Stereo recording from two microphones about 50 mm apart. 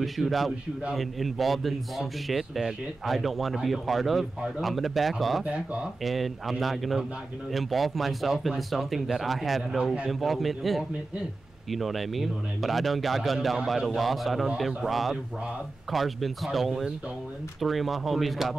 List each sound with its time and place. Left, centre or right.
0.0 s a man's voice: centre
5.4 s speech: right
6.0 s a man's voice: centre